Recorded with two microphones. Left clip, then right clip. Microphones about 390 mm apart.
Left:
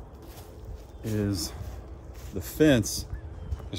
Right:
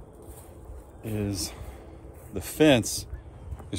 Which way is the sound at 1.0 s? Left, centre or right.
Centre.